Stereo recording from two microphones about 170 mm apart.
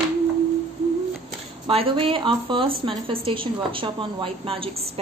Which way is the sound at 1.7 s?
30° right (ahead or behind).